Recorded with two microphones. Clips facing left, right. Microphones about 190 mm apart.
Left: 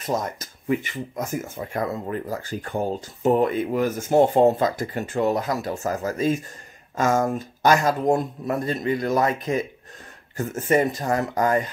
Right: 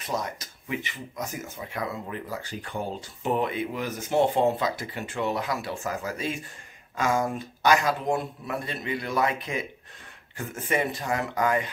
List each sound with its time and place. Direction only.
0.0 s speech: 45° left (ahead or behind)